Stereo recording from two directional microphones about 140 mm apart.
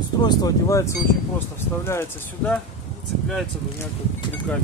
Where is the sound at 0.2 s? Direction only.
25° left (ahead or behind).